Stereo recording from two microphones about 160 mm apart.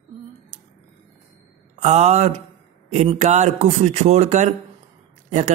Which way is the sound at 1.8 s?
45° right (ahead or behind).